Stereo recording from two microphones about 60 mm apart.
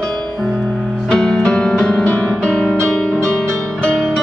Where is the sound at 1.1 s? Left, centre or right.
Centre.